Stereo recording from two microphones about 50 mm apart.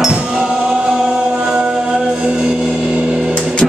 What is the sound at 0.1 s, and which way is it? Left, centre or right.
Music, centre.